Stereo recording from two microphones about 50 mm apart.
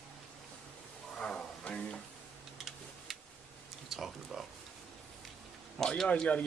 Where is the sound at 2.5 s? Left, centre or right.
Centre.